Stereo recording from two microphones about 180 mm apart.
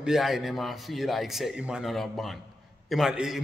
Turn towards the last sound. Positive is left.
turn(degrees=0)  # may be behind; listen again after turning